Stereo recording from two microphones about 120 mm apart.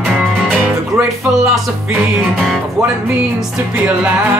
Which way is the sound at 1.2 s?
25° right (ahead or behind).